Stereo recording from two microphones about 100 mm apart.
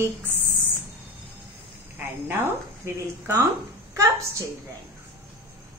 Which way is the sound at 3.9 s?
30° right (ahead or behind).